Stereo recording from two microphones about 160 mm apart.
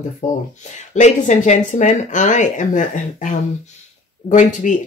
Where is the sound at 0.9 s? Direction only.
50° left (ahead or behind).